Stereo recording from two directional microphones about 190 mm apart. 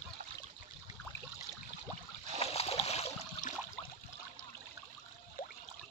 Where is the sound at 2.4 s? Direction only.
30° left (ahead or behind).